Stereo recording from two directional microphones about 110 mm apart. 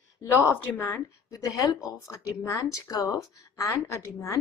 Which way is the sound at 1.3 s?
30° left (ahead or behind).